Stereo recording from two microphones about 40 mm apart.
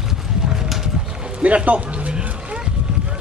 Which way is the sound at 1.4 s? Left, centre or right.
Right.